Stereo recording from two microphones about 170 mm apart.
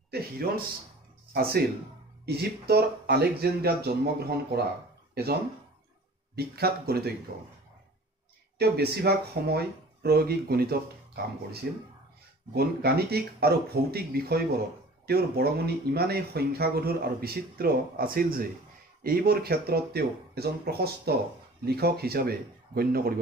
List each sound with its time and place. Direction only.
0.1 s speech: 65° right (ahead or behind)
1.3 s speech: 65° right (ahead or behind)
8.5 s speech: 70° right (ahead or behind)